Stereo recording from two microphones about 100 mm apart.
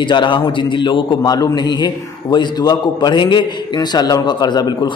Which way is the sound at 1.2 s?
40° left (ahead or behind).